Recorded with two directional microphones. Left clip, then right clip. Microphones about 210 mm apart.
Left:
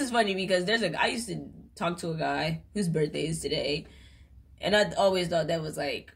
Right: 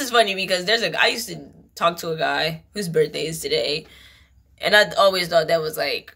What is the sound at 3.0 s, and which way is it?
Speech, 30° right (ahead or behind).